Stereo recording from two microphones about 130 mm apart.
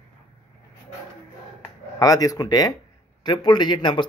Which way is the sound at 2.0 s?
30° left (ahead or behind).